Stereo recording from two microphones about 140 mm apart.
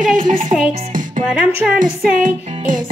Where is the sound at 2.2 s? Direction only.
70° right (ahead or behind).